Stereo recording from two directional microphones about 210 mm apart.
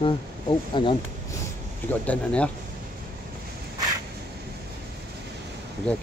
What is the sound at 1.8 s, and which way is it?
Speech, 5° left (ahead or behind).